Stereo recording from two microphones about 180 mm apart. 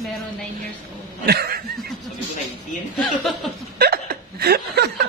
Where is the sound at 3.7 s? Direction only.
60° right (ahead or behind).